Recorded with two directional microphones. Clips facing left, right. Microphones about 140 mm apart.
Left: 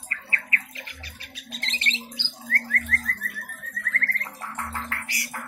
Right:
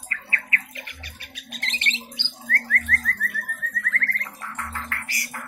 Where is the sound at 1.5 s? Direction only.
30° left (ahead or behind).